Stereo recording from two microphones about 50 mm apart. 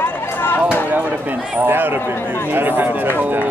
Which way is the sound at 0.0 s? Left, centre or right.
Left.